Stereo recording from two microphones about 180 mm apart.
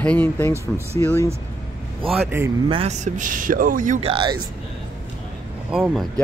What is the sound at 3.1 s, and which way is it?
Speech, 50° right (ahead or behind).